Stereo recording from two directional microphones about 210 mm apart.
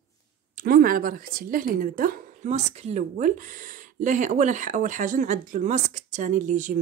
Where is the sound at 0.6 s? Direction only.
40° right (ahead or behind).